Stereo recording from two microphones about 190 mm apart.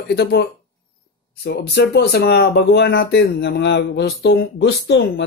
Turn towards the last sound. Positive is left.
turn(degrees=60)  # may be behind; listen again after turning